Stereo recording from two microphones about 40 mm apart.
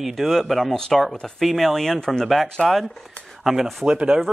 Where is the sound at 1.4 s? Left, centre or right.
Centre.